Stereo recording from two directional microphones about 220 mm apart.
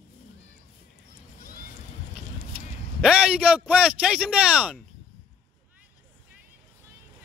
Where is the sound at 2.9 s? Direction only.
5° right (ahead or behind).